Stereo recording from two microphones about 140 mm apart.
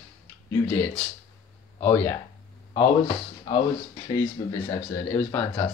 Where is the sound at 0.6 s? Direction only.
10° left (ahead or behind).